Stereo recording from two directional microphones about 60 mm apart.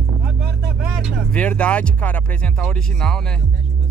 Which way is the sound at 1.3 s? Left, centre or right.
Left.